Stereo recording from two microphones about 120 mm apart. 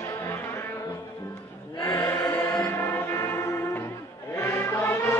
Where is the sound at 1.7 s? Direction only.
25° left (ahead or behind).